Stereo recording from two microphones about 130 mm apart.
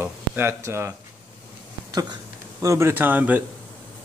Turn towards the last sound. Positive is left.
turn(degrees=-15)  # may be behind; listen again after turning